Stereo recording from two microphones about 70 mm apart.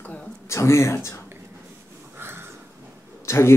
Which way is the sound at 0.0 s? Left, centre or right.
Centre.